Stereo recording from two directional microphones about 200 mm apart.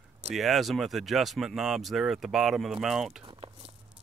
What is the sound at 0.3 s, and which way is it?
Speech, centre (ahead or behind).